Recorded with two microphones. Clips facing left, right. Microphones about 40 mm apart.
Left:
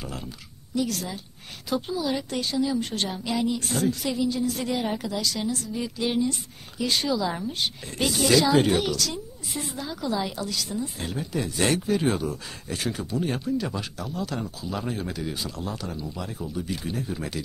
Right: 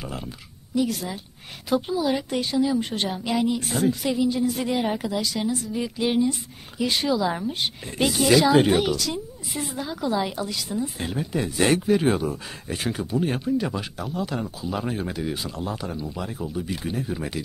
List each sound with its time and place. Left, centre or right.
0.0 s a woman's voice: centre
13.2 s a woman's voice: centre